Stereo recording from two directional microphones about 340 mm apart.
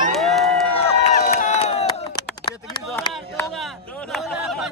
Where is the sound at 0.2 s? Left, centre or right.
Centre.